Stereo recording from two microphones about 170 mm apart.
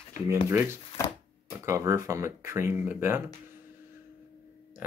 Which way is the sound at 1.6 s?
15° right (ahead or behind).